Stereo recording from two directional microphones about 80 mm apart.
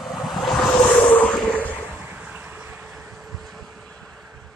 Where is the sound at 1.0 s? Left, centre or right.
Centre.